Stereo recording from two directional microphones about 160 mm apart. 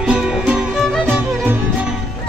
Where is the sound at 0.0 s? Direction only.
5° right (ahead or behind).